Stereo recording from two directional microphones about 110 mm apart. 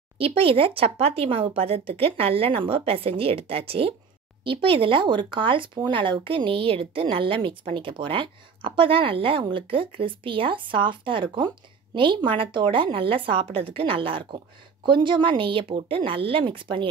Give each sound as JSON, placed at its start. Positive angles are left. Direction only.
{"t": 0.2, "sound": "a woman's voice", "side_deg": -60}